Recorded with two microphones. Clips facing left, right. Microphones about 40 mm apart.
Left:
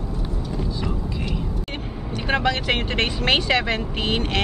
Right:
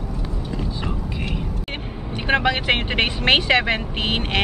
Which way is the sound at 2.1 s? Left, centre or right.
Centre.